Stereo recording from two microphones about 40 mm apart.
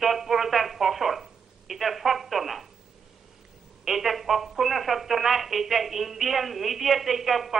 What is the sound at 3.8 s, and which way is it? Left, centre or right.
Speech, centre.